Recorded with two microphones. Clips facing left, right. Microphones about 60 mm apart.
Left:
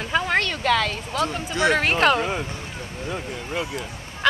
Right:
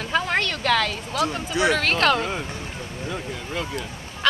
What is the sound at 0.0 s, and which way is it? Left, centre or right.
Speech, centre.